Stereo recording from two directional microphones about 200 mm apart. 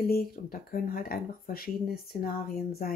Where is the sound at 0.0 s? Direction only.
50° left (ahead or behind).